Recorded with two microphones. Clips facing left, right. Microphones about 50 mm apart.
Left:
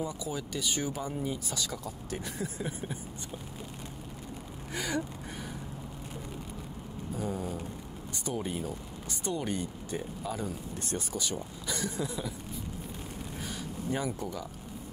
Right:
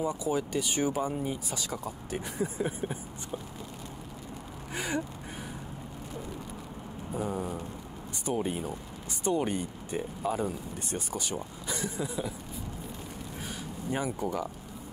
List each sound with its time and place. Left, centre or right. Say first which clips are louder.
0.0 s speech: right 6 dB; right
7.2 s a sound: right 2 dB; right
8.3 s speech: right 3 dB; centre
13.8 s speech: right 2 dB; centre